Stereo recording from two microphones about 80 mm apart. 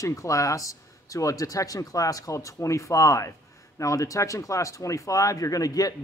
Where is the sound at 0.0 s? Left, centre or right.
Left.